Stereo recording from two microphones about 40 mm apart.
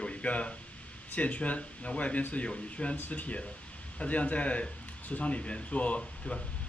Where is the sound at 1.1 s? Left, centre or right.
Left.